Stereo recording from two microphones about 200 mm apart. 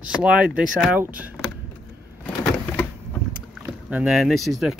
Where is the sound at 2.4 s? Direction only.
5° left (ahead or behind).